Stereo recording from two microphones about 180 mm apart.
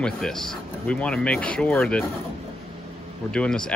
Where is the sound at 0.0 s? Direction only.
5° left (ahead or behind).